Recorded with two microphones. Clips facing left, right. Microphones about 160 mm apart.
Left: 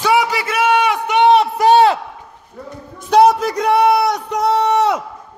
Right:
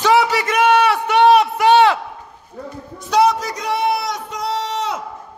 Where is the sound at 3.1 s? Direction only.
50° left (ahead or behind).